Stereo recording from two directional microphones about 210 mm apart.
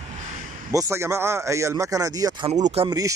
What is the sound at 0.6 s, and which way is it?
A man's voice, 15° right (ahead or behind).